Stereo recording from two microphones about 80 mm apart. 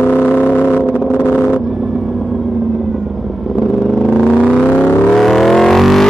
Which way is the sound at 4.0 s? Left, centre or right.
Centre.